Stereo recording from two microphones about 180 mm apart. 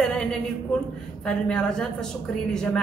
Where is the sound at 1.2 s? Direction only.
5° left (ahead or behind).